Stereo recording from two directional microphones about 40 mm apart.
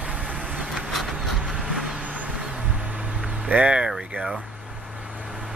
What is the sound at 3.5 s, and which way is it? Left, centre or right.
Speech, right.